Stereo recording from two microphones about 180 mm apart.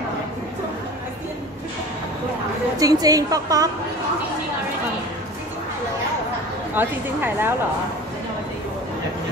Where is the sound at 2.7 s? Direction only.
20° right (ahead or behind).